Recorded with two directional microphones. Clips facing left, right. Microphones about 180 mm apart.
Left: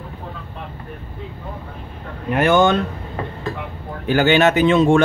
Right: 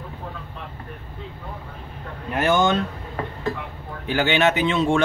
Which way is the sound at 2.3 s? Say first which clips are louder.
Left 5 dB; 60° left (ahead or behind).